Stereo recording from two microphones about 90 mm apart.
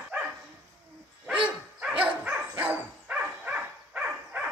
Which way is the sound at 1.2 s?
15° right (ahead or behind).